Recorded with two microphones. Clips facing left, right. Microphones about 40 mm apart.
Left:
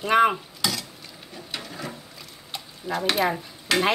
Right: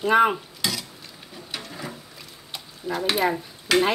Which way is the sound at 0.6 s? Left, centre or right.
Centre.